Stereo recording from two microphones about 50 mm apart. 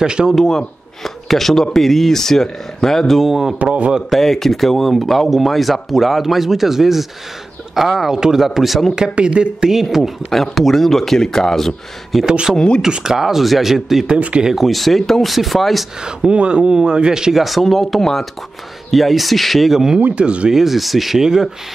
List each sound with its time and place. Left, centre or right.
0.0 s speech: centre
0.5 s a man's voice: centre
3.5 s speech: right
4.1 s speech: centre
9.1 s speech: right
9.7 s speech: centre
12.3 s speech: centre
12.5 s a man's voice: centre
12.8 s speech: centre
14.1 s speech: centre
14.5 s speech: centre
16.0 s speech: centre
20.2 s speech: right
20.5 s speech: centre